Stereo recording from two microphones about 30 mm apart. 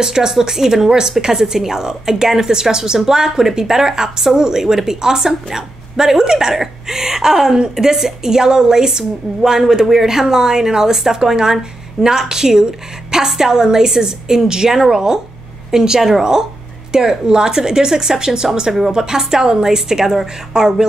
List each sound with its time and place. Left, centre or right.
0.0 s a woman's voice: centre
16.9 s a woman's voice: right